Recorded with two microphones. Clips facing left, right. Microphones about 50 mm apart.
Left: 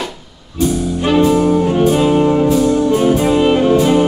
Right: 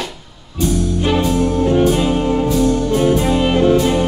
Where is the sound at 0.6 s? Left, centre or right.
Centre.